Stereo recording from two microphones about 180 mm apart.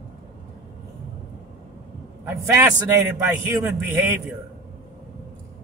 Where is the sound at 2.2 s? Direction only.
15° right (ahead or behind).